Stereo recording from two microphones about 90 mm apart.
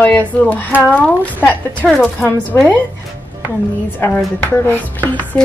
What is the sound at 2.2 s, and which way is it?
Speech, 25° left (ahead or behind).